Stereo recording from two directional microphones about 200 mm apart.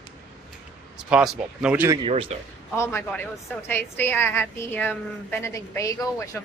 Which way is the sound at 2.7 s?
10° left (ahead or behind).